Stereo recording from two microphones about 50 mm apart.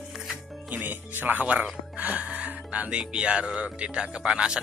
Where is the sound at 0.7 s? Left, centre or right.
Right.